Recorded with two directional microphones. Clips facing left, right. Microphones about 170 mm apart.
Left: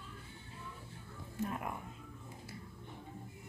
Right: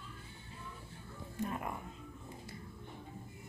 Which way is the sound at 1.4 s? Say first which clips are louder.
Even; 5° left (ahead or behind).